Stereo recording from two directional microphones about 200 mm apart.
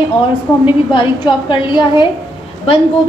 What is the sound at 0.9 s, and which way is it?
A woman's voice, 25° left (ahead or behind).